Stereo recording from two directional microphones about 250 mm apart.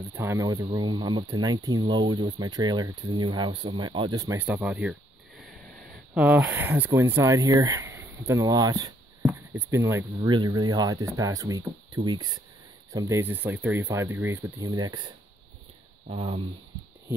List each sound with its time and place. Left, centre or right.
0.1 s speech: centre
6.1 s speech: centre
16.1 s speech: right